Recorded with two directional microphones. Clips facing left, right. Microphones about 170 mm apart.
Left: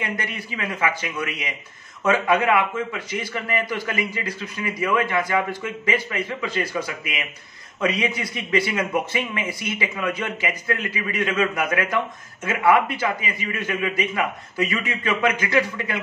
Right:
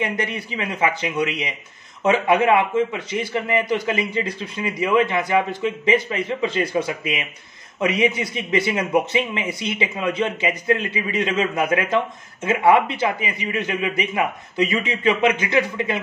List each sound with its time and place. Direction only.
0.0 s a man's voice: 25° right (ahead or behind)